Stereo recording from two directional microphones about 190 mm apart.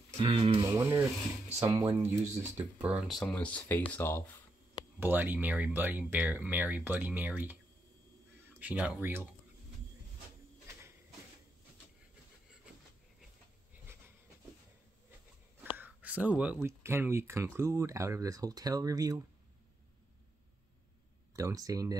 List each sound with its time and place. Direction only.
0.1 s speech: 30° right (ahead or behind)
0.7 s rub: 10° right (ahead or behind)
1.6 s speech: 15° right (ahead or behind); by 4.2 s 10° left (ahead or behind)
5.0 s speech: 10° right (ahead or behind)
8.5 s speech: 5° right (ahead or behind)
15.8 s speech: 10° right (ahead or behind)
21.4 s speech: 15° right (ahead or behind)